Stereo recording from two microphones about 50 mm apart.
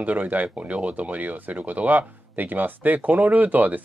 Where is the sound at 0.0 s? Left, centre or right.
Right.